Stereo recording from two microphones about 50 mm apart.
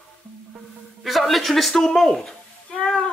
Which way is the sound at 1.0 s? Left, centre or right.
Centre.